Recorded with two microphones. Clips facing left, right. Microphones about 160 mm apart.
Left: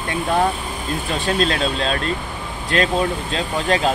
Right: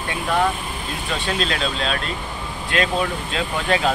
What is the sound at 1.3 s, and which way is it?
Speech, 40° left (ahead or behind).